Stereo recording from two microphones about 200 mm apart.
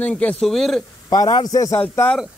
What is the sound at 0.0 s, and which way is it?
Speech, 5° left (ahead or behind).